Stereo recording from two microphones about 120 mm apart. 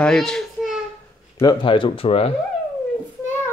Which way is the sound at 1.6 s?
45° left (ahead or behind).